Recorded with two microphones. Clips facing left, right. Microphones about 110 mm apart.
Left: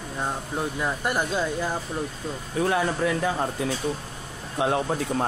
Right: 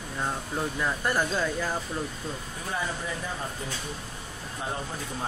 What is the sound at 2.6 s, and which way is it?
Speech, 80° left.